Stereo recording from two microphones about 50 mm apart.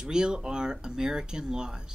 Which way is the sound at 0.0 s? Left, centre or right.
Centre.